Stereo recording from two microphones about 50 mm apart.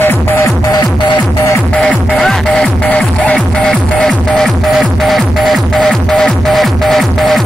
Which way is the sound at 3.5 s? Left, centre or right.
Centre.